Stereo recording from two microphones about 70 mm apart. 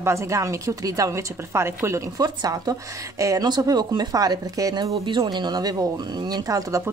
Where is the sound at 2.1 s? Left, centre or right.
Right.